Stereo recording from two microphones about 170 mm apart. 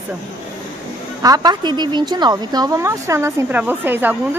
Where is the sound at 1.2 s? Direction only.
20° right (ahead or behind).